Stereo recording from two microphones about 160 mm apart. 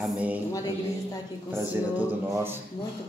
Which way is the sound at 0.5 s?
25° left (ahead or behind).